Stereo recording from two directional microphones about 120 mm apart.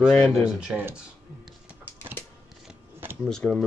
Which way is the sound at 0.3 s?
5° right (ahead or behind).